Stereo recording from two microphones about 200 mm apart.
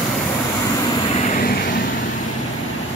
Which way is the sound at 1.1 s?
40° left (ahead or behind).